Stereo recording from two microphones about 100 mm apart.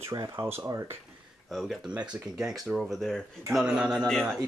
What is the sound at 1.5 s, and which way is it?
Speech, centre (ahead or behind).